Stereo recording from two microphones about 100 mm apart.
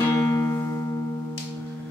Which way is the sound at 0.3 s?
30° left (ahead or behind).